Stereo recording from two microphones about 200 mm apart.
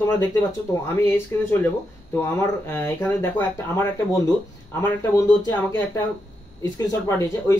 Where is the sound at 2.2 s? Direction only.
10° left (ahead or behind).